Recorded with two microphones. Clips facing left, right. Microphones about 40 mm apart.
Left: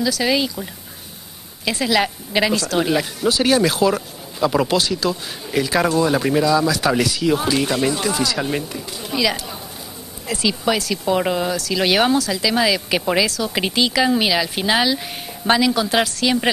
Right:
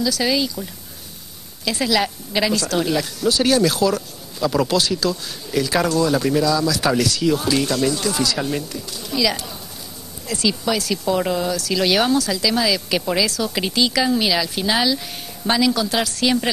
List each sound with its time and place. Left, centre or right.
0.0 s speech: left
1.9 s speech: left
8.2 s speech: centre
8.5 s speech: left